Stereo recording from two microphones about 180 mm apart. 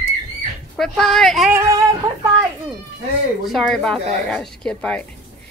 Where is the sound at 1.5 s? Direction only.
15° right (ahead or behind).